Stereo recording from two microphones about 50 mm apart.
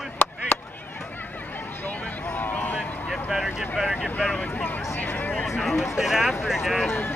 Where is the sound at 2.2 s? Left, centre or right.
Left.